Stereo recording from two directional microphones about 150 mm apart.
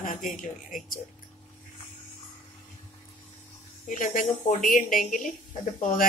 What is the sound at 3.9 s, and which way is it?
A woman's voice, 60° left (ahead or behind).